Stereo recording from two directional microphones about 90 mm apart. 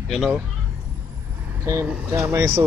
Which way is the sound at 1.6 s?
30° right (ahead or behind).